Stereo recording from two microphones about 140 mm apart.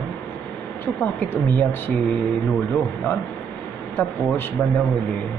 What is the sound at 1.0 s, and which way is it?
Speech, 15° left (ahead or behind).